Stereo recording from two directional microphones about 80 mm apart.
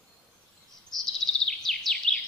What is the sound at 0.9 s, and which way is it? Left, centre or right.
Chirp, centre.